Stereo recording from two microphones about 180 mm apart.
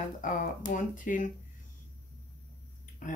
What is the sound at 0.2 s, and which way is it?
Speech, 45° left (ahead or behind).